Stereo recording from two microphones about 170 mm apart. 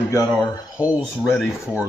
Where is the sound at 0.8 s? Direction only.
5° right (ahead or behind).